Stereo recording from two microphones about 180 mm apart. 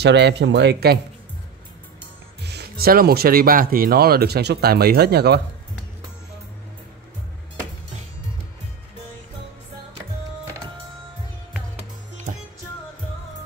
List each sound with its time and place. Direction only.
0.0 s speech: 70° right (ahead or behind)
2.4 s speech: 60° right (ahead or behind)